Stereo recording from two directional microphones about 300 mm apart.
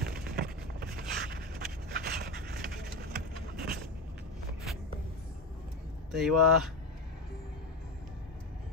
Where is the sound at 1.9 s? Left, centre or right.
Right.